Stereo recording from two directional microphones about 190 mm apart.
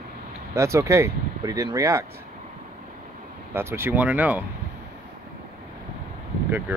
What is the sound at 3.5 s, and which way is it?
Speech, 10° right (ahead or behind).